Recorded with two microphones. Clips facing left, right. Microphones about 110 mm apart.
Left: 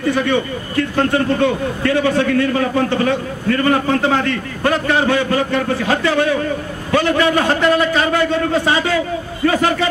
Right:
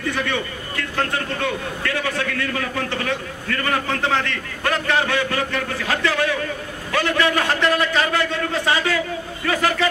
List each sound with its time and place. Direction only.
0.1 s a man's voice: 30° left (ahead or behind)